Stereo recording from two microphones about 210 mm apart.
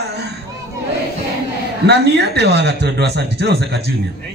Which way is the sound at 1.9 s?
50° right (ahead or behind).